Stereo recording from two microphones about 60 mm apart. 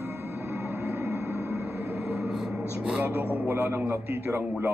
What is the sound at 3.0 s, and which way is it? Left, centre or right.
A man's voice, right.